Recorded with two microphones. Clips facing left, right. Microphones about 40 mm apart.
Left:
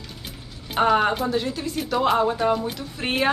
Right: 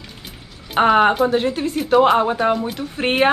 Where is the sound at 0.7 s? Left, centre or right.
Right.